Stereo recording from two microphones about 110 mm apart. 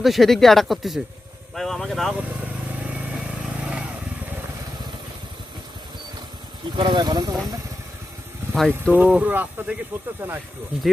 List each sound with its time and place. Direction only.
0.0 s speech: centre (ahead or behind)
2.1 s vehicle: 10° right (ahead or behind)
6.7 s speech: 45° right (ahead or behind)
8.5 s speech: 5° left (ahead or behind)
8.9 s speech: 15° right (ahead or behind)